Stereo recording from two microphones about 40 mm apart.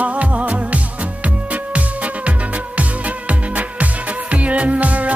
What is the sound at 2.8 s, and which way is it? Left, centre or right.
Music, right.